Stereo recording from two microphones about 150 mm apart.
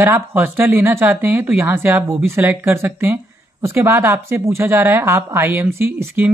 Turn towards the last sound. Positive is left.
turn(degrees=-15)  # may be behind; listen again after turning